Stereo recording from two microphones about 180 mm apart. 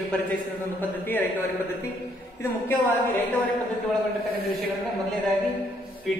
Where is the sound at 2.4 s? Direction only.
15° left (ahead or behind).